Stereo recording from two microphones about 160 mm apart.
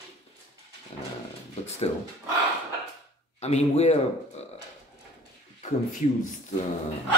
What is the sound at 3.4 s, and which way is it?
Speech, 40° left (ahead or behind).